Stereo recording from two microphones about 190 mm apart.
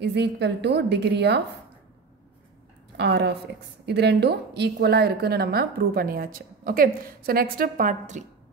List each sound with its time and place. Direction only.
0.0 s a woman's voice: 65° right (ahead or behind)
3.0 s a woman's voice: 60° right (ahead or behind); by 8.3 s 45° right (ahead or behind)